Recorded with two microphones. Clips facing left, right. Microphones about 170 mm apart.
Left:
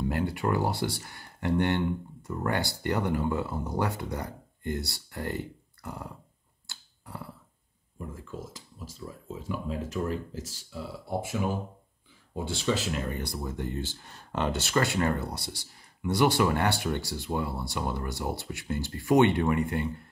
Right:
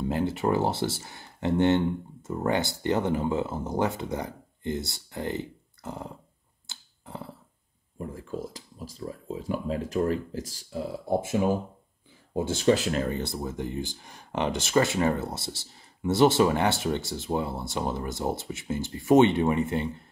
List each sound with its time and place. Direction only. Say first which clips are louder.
0.1 s speech: right 6 dB; 25° right (ahead or behind)
6.7 s finger snapping: right 2 dB; 20° right (ahead or behind)
8.3 s speech: right 6 dB; 35° right (ahead or behind)
13.1 s speech: right 3 dB; 25° right (ahead or behind)